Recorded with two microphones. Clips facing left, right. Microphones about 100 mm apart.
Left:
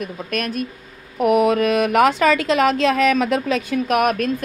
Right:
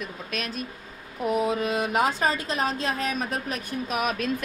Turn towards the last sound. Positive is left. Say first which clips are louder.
# left 9 dB
turn(degrees=55)  # may be behind; listen again after turning